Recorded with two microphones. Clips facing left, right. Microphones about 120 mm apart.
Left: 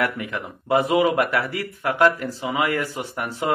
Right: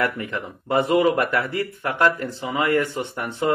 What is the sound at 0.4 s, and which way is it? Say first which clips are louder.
Speech: left 1 dB; 5° left (ahead or behind).